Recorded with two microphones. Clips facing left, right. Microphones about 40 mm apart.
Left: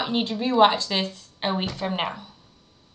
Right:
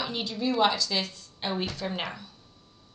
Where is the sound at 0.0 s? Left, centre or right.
Left.